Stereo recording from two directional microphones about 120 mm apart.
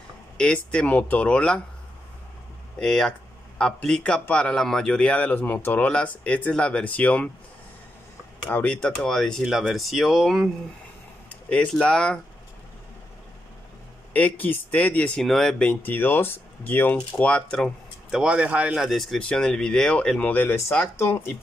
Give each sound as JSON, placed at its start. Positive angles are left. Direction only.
{"t": 0.4, "sound": "speech", "side_deg": 10}
{"t": 2.8, "sound": "speech", "side_deg": 5}
{"t": 8.5, "sound": "speech", "side_deg": 15}
{"t": 14.1, "sound": "speech", "side_deg": 15}
{"t": 15.7, "sound": "speech", "side_deg": 15}